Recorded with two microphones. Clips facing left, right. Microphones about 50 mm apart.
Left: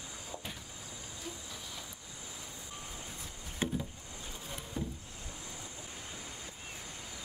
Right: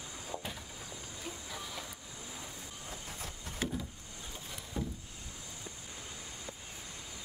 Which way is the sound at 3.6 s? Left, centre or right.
Left.